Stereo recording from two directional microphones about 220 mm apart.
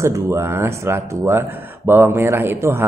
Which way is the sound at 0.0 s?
10° right (ahead or behind).